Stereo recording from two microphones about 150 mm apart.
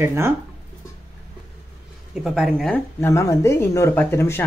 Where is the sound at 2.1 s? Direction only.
Centre (ahead or behind).